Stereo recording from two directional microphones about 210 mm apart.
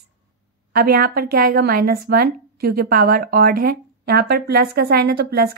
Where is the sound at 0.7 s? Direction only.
45° right (ahead or behind).